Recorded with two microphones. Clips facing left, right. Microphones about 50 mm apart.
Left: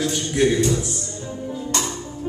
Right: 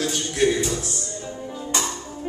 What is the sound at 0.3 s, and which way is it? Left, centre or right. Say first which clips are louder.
Speech: left 2 dB; centre.